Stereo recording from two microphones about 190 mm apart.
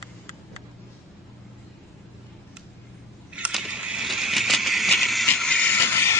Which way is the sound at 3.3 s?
5° right (ahead or behind).